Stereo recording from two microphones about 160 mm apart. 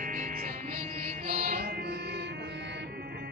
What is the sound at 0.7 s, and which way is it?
Music, 45° right (ahead or behind).